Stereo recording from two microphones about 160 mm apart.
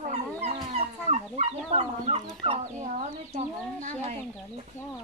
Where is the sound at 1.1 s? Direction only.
40° right (ahead or behind).